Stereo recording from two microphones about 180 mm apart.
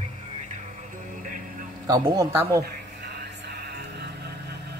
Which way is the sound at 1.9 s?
20° right (ahead or behind).